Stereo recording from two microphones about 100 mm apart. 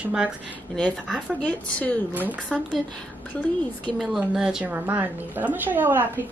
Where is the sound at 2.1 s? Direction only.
15° right (ahead or behind).